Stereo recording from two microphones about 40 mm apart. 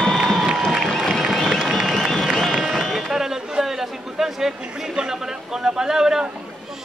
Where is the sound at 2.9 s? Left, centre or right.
Centre.